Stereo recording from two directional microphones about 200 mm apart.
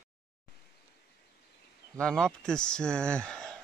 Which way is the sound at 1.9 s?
5° left (ahead or behind).